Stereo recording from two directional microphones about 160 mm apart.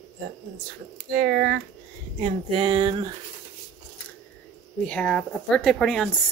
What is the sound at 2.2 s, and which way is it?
Speech, 35° right (ahead or behind).